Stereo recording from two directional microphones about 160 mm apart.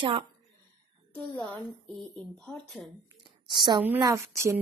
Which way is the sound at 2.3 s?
5° left (ahead or behind).